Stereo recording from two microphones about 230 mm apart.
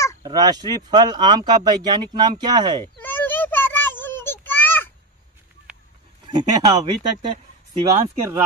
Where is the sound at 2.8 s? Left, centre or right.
Centre.